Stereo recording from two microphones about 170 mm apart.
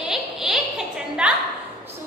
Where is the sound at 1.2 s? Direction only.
5° right (ahead or behind).